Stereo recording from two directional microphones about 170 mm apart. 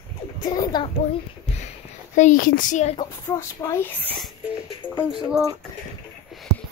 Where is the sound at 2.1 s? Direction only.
50° left (ahead or behind).